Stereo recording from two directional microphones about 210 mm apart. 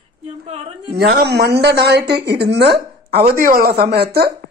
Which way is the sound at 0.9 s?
50° right (ahead or behind).